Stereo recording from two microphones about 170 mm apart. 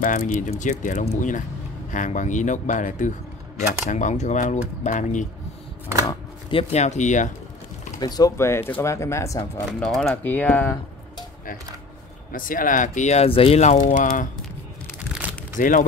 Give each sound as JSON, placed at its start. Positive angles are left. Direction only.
{"t": 0.0, "sound": "speech", "side_deg": 50}
{"t": 6.5, "sound": "speech", "side_deg": 40}
{"t": 8.0, "sound": "speech", "side_deg": 20}
{"t": 9.8, "sound": "speech", "side_deg": 0}
{"t": 12.3, "sound": "speech", "side_deg": 55}
{"t": 15.5, "sound": "speech", "side_deg": 55}